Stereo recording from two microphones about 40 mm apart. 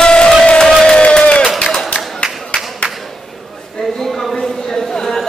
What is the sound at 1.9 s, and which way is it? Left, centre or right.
Music, left.